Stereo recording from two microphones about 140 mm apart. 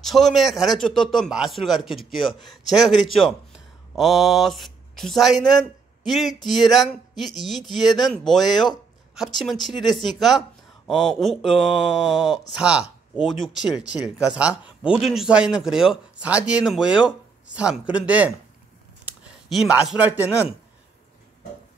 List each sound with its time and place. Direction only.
0.0 s speech: centre (ahead or behind)
19.5 s speech: 5° right (ahead or behind)